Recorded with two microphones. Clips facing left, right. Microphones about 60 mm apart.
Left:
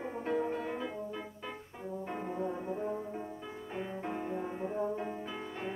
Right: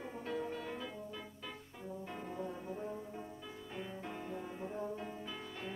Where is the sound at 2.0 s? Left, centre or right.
Left.